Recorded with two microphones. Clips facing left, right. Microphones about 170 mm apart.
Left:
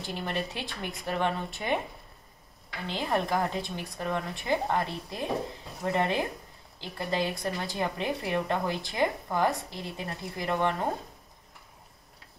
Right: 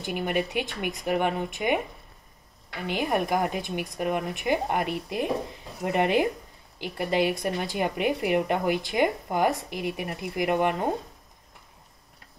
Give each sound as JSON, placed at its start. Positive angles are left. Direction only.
{"t": 0.0, "sound": "speech", "side_deg": -15}
{"t": 2.9, "sound": "speech", "side_deg": -15}